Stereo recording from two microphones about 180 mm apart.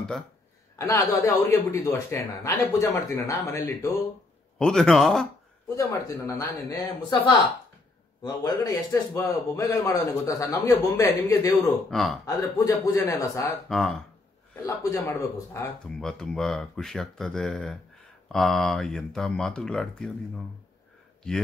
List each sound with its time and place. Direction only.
0.7 s a man's voice: 20° left (ahead or behind)
4.6 s speech: 5° left (ahead or behind)
5.8 s a man's voice: 15° left (ahead or behind)
11.9 s speech: centre (ahead or behind)
12.3 s a man's voice: 15° left (ahead or behind)
13.7 s speech: centre (ahead or behind)
14.5 s a man's voice: 20° left (ahead or behind)
16.0 s speech: 5° left (ahead or behind)